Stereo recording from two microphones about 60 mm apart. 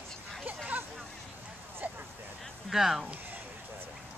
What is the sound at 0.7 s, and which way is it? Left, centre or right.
Hubbub, right.